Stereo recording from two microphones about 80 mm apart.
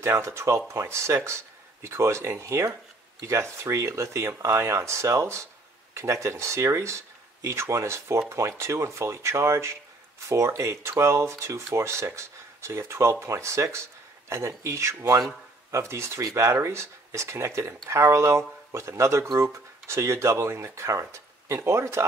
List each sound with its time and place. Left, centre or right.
0.0 s speech: right